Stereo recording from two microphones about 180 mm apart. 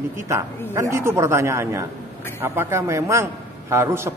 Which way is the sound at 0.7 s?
15° right (ahead or behind).